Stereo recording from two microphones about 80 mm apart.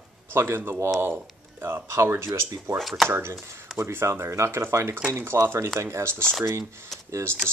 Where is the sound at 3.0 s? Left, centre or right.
Right.